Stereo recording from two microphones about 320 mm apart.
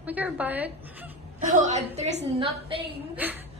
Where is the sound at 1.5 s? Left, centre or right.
Right.